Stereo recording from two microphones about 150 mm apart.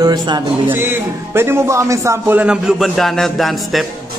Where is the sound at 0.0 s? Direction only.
25° right (ahead or behind).